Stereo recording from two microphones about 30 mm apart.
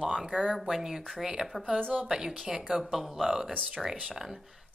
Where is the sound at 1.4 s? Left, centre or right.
Left.